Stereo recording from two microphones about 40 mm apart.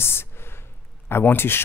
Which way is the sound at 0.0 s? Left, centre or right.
Left.